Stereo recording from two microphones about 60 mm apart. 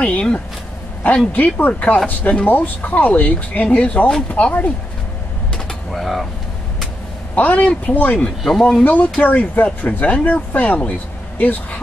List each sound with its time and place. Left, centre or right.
0.0 s speech: centre
5.7 s speech: centre
7.3 s speech: left
8.5 s speech: centre
8.8 s speech: left